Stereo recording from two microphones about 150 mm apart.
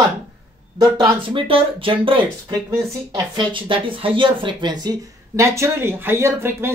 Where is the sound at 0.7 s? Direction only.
25° right (ahead or behind).